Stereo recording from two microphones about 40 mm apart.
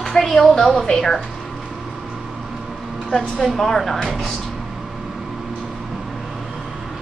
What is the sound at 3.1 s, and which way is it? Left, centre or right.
Speech, centre.